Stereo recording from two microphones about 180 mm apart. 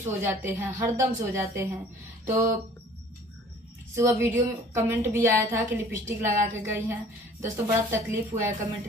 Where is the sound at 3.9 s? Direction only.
15° right (ahead or behind).